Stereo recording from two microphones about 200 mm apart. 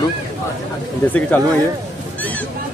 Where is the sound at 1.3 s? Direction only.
10° left (ahead or behind).